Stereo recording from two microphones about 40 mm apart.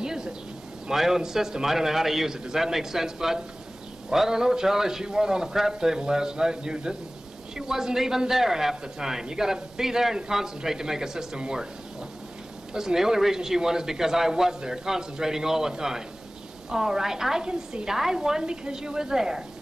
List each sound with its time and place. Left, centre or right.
0.0 s bird: centre
0.8 s a man's voice: centre
12.7 s a man's voice: centre